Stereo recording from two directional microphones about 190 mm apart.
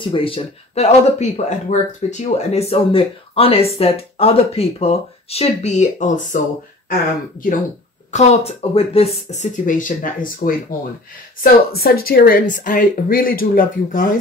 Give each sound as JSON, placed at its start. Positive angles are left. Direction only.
{"t": 0.0, "sound": "speech", "side_deg": 30}